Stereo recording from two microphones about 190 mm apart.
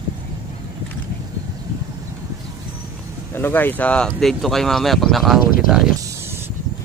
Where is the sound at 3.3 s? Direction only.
10° left (ahead or behind).